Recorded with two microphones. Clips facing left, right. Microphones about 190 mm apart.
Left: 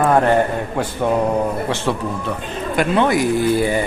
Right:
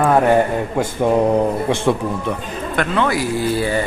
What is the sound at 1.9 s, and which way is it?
Speech, 20° right (ahead or behind).